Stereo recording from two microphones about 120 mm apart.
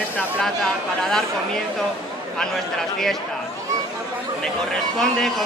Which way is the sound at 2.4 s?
5° left (ahead or behind).